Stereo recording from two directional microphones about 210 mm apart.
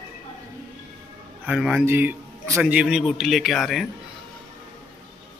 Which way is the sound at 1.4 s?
5° right (ahead or behind).